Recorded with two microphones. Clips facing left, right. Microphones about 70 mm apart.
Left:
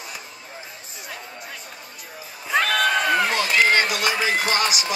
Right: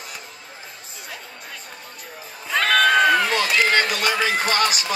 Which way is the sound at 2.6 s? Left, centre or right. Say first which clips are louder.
Right 7 dB; right.